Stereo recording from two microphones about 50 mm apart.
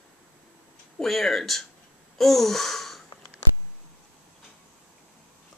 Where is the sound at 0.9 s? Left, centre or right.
Centre.